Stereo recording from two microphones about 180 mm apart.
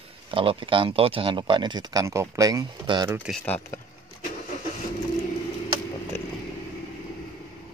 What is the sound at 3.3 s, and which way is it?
Speech, 5° left (ahead or behind).